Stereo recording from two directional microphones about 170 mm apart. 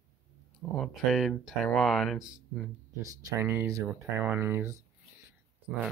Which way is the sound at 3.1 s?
20° right (ahead or behind).